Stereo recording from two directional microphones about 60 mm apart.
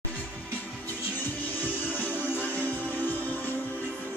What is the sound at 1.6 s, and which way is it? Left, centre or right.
Music, left.